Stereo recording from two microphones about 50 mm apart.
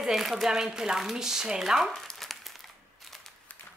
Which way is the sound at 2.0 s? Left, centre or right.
Centre.